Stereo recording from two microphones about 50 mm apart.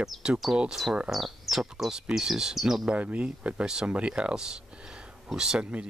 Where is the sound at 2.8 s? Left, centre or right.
Right.